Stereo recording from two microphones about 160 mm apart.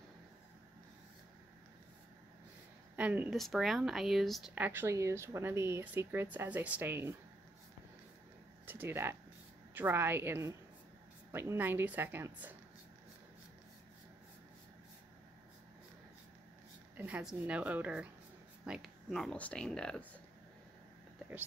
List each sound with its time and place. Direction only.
3.0 s speech: 10° right (ahead or behind)
4.6 s speech: 15° right (ahead or behind)
8.6 s speech: 10° right (ahead or behind)
16.9 s speech: 10° right (ahead or behind); by 20.2 s 5° left (ahead or behind)